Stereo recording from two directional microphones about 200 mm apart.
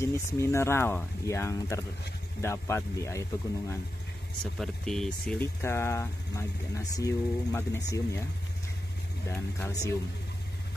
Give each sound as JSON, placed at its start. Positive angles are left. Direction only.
{"t": 0.0, "sound": "speech", "side_deg": 15}
{"t": 4.6, "sound": "speech", "side_deg": 5}
{"t": 9.3, "sound": "speech", "side_deg": 10}